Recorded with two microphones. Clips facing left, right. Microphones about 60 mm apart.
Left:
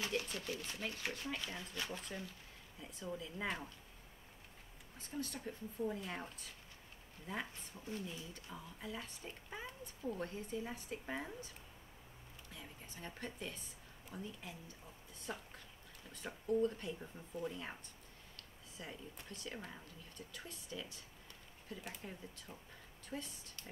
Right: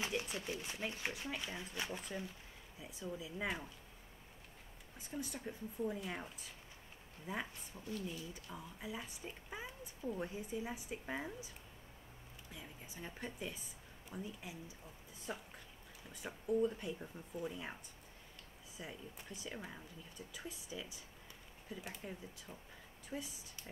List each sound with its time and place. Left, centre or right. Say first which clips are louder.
0.0 s speech: even; right
4.9 s speech: even; centre
12.5 s speech: right 2 dB; centre
18.8 s speech: right 1 dB; centre
21.8 s speech: right 1 dB; centre